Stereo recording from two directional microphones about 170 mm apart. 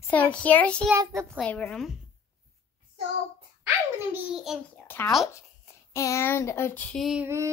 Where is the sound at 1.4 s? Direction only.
10° left (ahead or behind).